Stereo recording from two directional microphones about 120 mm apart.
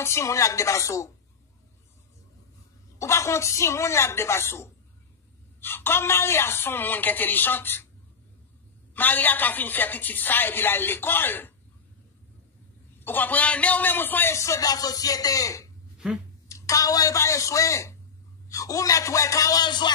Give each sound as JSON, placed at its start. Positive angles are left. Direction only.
{"t": 0.0, "sound": "a man's voice", "side_deg": 25}
{"t": 3.0, "sound": "a man's voice", "side_deg": 25}
{"t": 8.9, "sound": "a woman's voice", "side_deg": 15}
{"t": 13.0, "sound": "a man's voice", "side_deg": 15}